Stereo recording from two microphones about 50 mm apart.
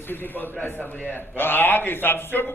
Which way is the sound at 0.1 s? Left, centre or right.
Left.